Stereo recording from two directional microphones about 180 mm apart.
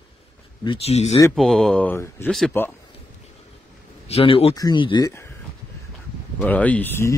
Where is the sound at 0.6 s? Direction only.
30° left (ahead or behind).